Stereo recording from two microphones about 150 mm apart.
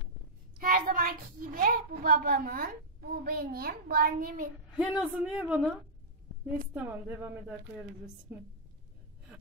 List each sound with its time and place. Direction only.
0.6 s a woman's voice: 80° right
4.7 s a woman's voice: 5° right (ahead or behind)